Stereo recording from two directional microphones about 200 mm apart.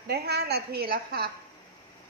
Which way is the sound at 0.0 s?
55° right (ahead or behind).